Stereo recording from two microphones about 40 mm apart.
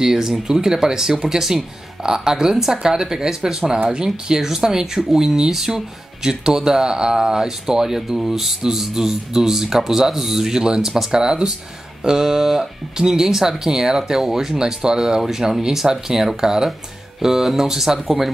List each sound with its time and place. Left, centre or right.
0.0 s speech: centre
11.1 s speech: centre